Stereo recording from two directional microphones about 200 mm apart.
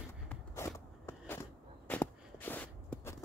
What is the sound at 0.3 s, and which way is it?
Walk, 15° left (ahead or behind).